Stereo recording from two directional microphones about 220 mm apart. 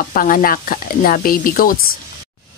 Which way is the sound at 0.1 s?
40° left (ahead or behind).